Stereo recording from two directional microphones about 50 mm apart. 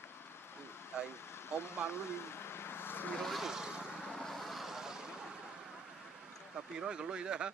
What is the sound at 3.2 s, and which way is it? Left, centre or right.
Speech, centre.